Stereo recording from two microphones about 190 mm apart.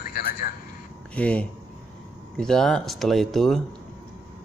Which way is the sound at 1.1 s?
5° left (ahead or behind).